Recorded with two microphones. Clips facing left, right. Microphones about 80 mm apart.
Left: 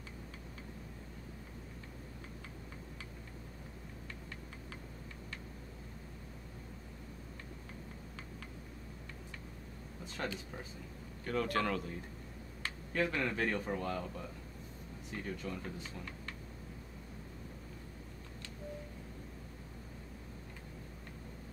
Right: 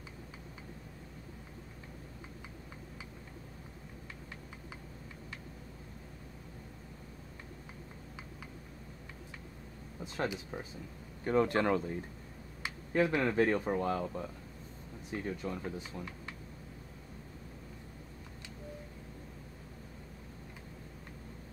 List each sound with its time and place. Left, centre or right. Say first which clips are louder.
10.1 s speech: right 5 dB; centre